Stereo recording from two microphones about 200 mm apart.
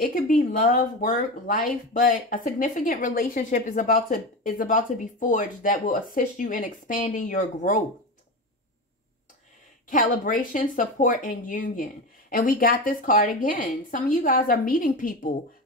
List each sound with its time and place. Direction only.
0.0 s speech: 40° left (ahead or behind)
9.8 s speech: 40° left (ahead or behind)